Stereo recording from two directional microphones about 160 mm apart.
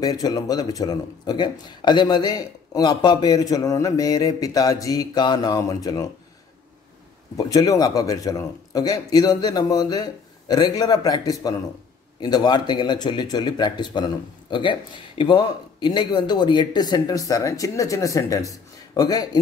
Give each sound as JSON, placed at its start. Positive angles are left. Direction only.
{"t": 0.0, "sound": "speech", "side_deg": 25}
{"t": 7.3, "sound": "speech", "side_deg": 20}